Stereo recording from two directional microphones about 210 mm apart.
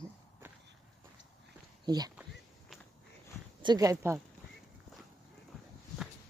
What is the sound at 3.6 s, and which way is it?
Speech, 20° right (ahead or behind).